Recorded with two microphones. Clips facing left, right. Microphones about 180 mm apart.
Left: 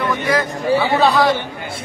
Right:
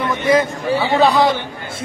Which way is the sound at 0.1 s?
20° right (ahead or behind).